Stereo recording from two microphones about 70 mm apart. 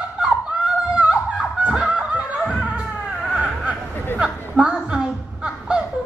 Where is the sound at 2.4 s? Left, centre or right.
Centre.